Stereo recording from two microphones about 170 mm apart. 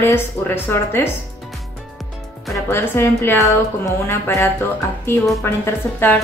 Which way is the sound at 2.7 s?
15° left (ahead or behind).